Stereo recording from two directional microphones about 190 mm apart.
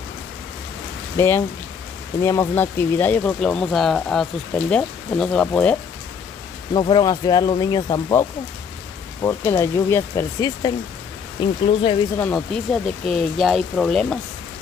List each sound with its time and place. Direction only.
1.1 s speech: 15° left (ahead or behind)
6.7 s speech: 25° left (ahead or behind)
11.6 s speech: 30° left (ahead or behind)
12.2 s speech: 10° left (ahead or behind)